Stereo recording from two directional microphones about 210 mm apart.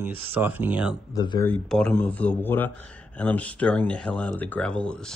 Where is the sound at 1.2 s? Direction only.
15° left (ahead or behind).